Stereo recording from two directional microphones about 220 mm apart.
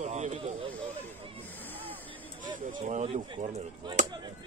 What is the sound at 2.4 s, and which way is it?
A man's voice, 35° right (ahead or behind).